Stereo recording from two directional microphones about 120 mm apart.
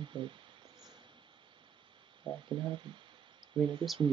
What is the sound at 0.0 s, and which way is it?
Speech, 40° right (ahead or behind).